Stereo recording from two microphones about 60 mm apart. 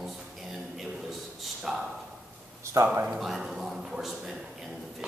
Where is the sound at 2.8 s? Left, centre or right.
Right.